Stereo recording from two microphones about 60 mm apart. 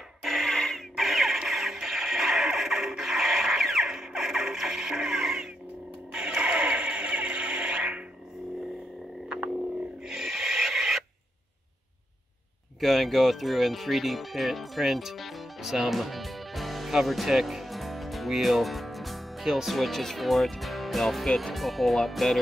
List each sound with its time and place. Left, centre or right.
0.2 s music: centre
10.0 s filing: centre
12.8 s speech: centre